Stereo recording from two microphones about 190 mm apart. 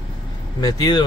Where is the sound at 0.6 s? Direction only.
20° left (ahead or behind).